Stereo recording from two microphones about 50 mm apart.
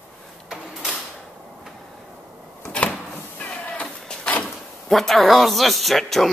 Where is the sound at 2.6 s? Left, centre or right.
Left.